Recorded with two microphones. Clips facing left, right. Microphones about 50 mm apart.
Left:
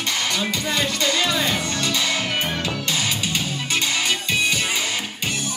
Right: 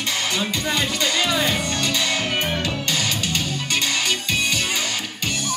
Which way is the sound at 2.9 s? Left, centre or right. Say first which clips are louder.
Even; centre.